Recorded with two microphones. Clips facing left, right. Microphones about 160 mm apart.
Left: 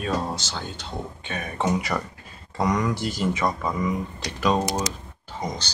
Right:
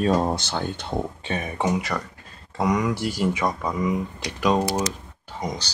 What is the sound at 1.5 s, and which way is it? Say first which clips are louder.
Speech: even; 15° right (ahead or behind).